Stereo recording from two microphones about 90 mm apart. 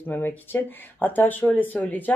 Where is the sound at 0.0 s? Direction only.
20° left (ahead or behind).